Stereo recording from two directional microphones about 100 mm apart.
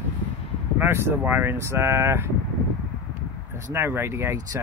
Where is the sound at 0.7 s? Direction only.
25° right (ahead or behind).